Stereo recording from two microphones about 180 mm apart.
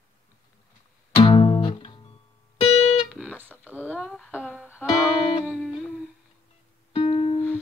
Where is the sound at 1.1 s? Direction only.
30° left (ahead or behind).